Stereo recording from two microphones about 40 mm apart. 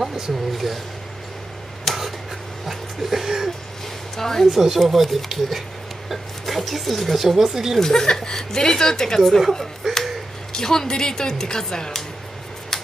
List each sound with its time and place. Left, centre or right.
0.5 s speech: centre
1.9 s a sound: centre
2.6 s a sound: centre
4.2 s speech: centre
4.5 s speech: centre
7.8 s speech: centre
9.8 s finger snapping: centre
10.5 s speech: centre